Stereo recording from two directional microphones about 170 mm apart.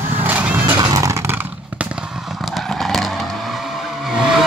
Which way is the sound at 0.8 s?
20° right (ahead or behind).